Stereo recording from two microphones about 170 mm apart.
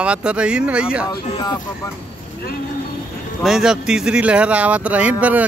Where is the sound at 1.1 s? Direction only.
25° left (ahead or behind).